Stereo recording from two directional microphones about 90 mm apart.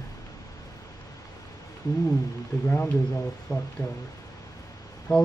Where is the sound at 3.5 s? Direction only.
40° left (ahead or behind).